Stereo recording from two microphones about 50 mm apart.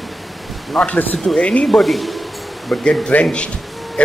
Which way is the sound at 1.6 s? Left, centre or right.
Centre.